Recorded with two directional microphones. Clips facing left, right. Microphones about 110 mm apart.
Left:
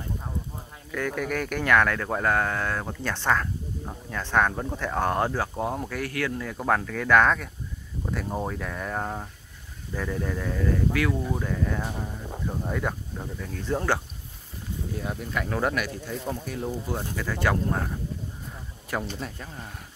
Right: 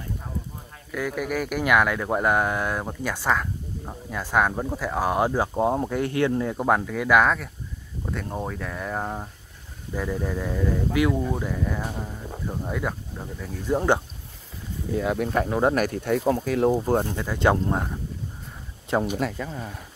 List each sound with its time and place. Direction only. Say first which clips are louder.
0.9 s speech: right 1 dB; 5° right (ahead or behind)
15.0 s speech: right 8 dB; 65° right (ahead or behind)
15.7 s speech: right 8 dB; 50° right (ahead or behind); by 16.7 s 90° right
16.7 s speech: right 9 dB; 50° right (ahead or behind)
17.1 s speech: right 4 dB; 20° right (ahead or behind)
18.9 s speech: right 7 dB; 25° right (ahead or behind)